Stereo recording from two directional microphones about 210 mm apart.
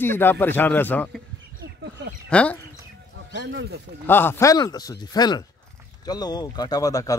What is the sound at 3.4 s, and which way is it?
Speech, 55° right (ahead or behind).